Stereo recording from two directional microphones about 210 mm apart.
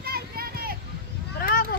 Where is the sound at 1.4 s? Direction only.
45° left (ahead or behind).